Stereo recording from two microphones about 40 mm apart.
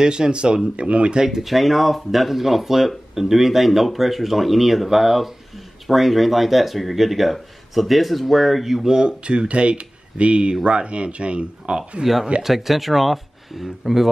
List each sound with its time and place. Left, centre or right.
0.0 s speech: centre
1.2 s speech: centre
1.5 s speech: centre
8.8 s speech: centre
12.0 s speech: centre